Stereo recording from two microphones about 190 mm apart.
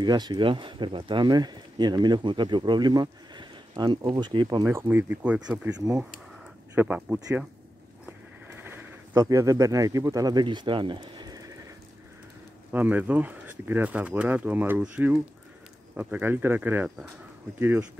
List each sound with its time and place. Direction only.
0.0 s speech: 20° right (ahead or behind)
4.6 s speech: 15° right (ahead or behind)
8.5 s speech: 10° right (ahead or behind)
12.7 s speech: 10° right (ahead or behind)